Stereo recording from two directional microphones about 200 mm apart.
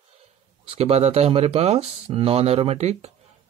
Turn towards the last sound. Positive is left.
turn(degrees=-30)  # may be behind; listen again after turning